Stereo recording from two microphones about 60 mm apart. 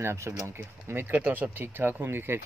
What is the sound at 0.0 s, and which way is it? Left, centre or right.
Speech, right.